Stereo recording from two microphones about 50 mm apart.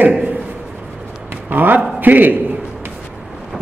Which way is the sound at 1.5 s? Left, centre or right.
Right.